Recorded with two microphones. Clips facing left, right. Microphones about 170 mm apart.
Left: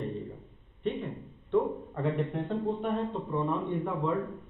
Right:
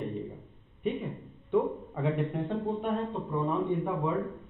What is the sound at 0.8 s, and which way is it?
Music, centre (ahead or behind).